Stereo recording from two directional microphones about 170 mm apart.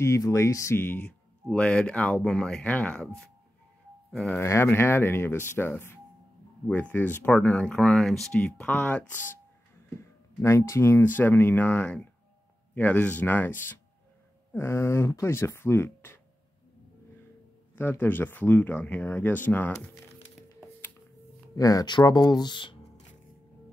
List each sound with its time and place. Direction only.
0.0 s speech: 15° left (ahead or behind)
17.7 s speech: 10° left (ahead or behind)
21.5 s speech: 20° left (ahead or behind)